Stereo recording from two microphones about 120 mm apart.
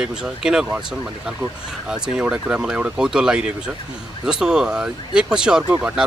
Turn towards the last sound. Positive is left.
turn(degrees=-5)  # may be behind; listen again after turning